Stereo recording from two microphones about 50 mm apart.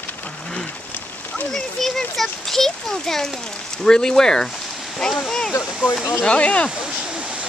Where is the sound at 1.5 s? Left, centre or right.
Centre.